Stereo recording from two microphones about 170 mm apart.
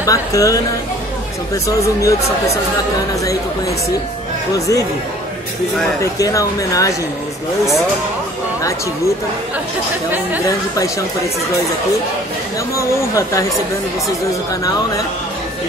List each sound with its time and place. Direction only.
0.0 s speech: 20° left (ahead or behind)
6.1 s speech: 20° left (ahead or behind)
12.7 s speech: 20° left (ahead or behind)